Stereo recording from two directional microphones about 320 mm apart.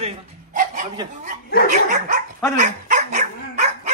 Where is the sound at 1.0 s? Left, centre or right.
Right.